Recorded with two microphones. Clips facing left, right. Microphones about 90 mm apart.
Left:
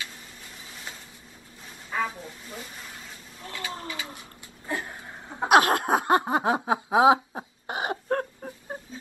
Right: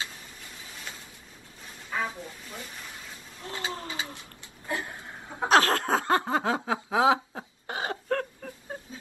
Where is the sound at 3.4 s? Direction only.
25° right (ahead or behind).